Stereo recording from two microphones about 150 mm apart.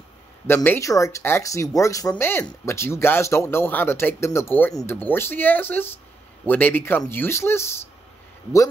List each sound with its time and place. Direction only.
0.7 s speech: 20° left (ahead or behind)